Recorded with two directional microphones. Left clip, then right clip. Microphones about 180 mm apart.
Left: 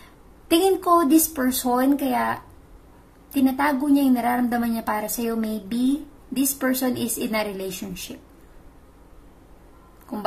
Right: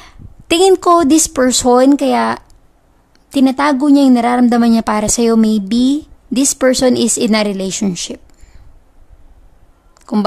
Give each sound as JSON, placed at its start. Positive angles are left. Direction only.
{"t": 0.5, "sound": "a woman's voice", "side_deg": -50}